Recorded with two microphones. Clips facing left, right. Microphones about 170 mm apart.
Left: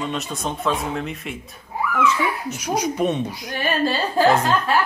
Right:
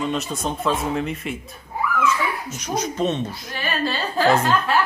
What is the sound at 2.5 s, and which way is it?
Speech, 10° left (ahead or behind).